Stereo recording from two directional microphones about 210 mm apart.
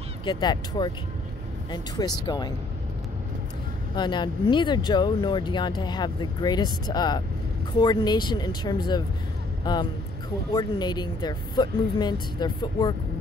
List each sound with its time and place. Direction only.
0.2 s speech: 20° left (ahead or behind)
3.9 s speech: 20° left (ahead or behind)